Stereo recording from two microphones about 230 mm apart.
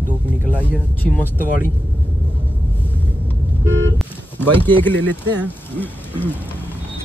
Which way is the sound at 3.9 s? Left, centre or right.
Centre.